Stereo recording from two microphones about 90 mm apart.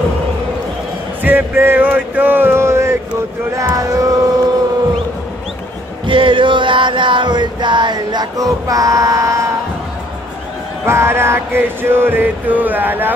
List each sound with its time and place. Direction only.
1.2 s a sound: 25° right (ahead or behind)
3.6 s music: 40° right (ahead or behind)
6.0 s music: 70° right (ahead or behind); by 9.5 s 35° right (ahead or behind)
10.9 s music: 30° right (ahead or behind)